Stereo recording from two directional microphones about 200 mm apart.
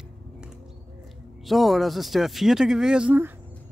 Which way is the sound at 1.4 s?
Centre (ahead or behind).